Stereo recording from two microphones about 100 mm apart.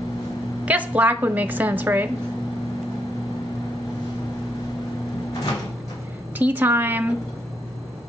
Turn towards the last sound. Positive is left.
turn(degrees=-20)  # may be behind; listen again after turning